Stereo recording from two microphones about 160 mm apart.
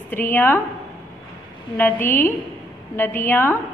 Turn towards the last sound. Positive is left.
turn(degrees=15)  # may be behind; listen again after turning